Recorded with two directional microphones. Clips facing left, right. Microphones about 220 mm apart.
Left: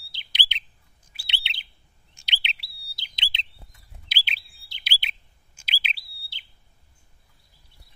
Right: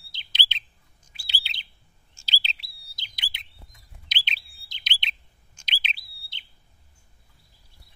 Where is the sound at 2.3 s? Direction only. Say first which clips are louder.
Even; 35° right (ahead or behind).